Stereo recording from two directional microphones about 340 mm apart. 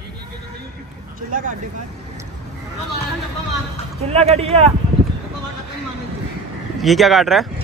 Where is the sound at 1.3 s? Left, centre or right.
Right.